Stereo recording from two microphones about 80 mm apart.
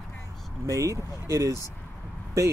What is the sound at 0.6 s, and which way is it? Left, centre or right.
Speech, right.